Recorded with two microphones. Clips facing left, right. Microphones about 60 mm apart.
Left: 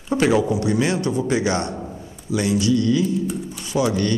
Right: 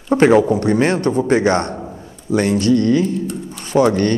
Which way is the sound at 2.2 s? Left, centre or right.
Right.